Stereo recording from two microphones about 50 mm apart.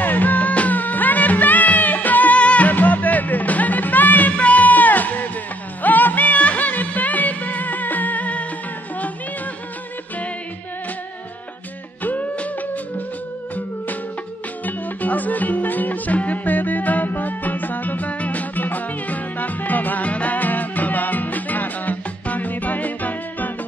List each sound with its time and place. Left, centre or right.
0.0 s music: left
12.0 s music: left
14.6 s music: left